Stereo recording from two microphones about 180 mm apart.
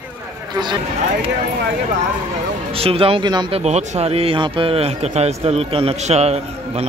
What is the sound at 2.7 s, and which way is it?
Speech, 30° right (ahead or behind).